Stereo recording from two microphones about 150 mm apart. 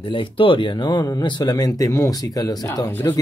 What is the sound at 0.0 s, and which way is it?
Speech, 35° left (ahead or behind).